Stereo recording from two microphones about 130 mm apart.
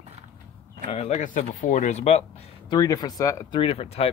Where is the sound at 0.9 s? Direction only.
60° left (ahead or behind).